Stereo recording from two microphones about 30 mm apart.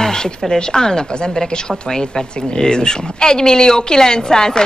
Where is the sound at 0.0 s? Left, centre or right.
Centre.